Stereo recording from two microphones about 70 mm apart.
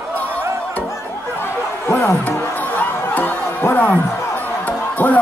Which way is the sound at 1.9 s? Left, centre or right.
Left.